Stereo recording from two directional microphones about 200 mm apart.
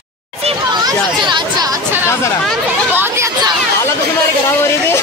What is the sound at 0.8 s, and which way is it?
Speech, 20° right (ahead or behind).